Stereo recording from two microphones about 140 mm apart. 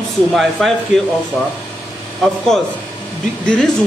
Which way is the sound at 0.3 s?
Centre (ahead or behind).